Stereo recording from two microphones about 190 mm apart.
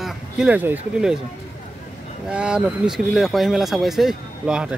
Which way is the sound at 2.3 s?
5° right (ahead or behind).